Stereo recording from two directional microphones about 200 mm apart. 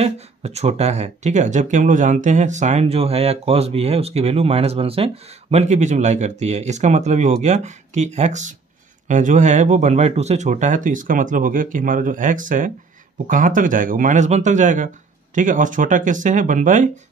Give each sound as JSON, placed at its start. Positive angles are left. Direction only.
{"t": 0.0, "sound": "speech", "side_deg": -30}